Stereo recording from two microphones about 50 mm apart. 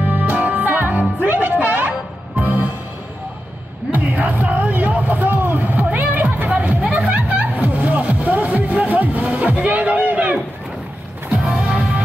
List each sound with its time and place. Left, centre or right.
0.0 s music: right
3.9 s music: right
11.5 s music: centre